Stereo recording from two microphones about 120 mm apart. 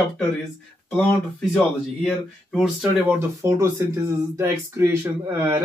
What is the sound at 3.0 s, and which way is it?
Speech, 25° right (ahead or behind).